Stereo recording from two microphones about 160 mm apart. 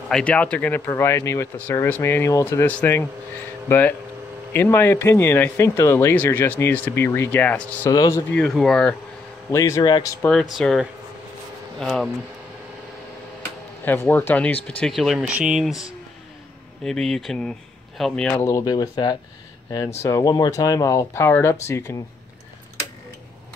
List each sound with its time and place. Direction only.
0.1 s speech: 10° left (ahead or behind)
7.9 s speech: 25° left (ahead or behind)
8.3 s speech: 5° left (ahead or behind)
9.5 s speech: 20° left (ahead or behind)
10.2 s speech: centre (ahead or behind)
13.8 s speech: 10° left (ahead or behind); by 15.8 s 5° right (ahead or behind)
16.8 s speech: 5° left (ahead or behind)
18.4 s speech: 25° left (ahead or behind)